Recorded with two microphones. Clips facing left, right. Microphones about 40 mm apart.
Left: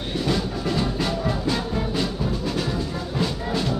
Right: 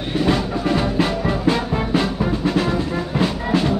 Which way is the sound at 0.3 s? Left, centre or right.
Right.